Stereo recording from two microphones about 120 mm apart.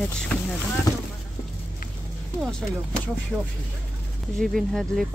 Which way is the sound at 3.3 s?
10° right (ahead or behind).